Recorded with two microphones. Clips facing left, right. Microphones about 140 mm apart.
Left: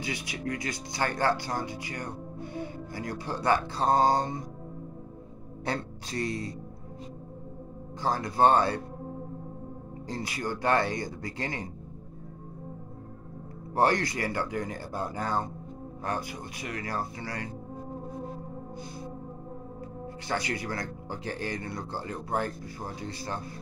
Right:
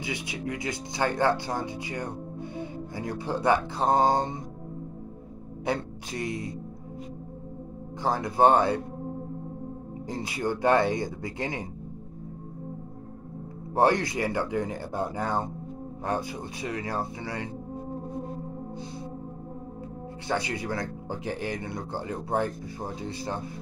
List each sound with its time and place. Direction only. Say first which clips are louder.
0.0 s speech: right 1 dB; 20° right (ahead or behind)
5.7 s speech: right 3 dB; 15° right (ahead or behind)
8.0 s speech: right 2 dB; 20° right (ahead or behind)
10.0 s speech: right 4 dB; 20° right (ahead or behind)
13.7 s speech: right 2 dB; 20° right (ahead or behind)
20.2 s speech: right 3 dB; 25° right (ahead or behind)